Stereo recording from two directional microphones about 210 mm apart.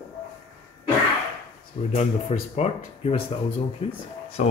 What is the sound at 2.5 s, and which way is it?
Speech, 30° left (ahead or behind).